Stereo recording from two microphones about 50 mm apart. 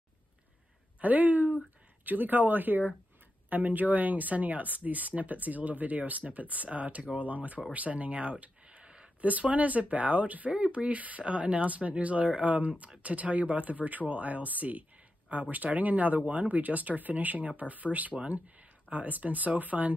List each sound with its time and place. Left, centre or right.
1.0 s speech: right
7.7 s a sound: right
9.2 s speech: right